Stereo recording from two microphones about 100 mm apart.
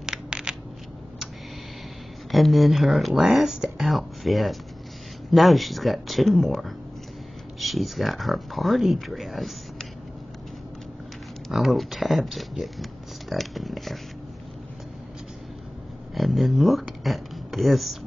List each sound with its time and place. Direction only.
0.0 s a sound: 5° right (ahead or behind)
2.3 s speech: centre (ahead or behind)
11.4 s speech: centre (ahead or behind)
16.2 s speech: centre (ahead or behind)